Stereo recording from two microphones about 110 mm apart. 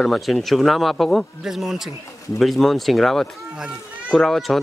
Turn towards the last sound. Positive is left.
turn(degrees=0)  # may be behind; listen again after turning